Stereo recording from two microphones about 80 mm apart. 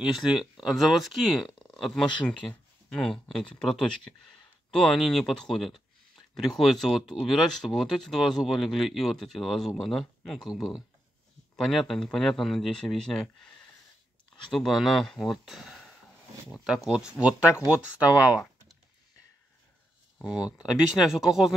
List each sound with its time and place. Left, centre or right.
0.0 s speech: centre
20.2 s speech: centre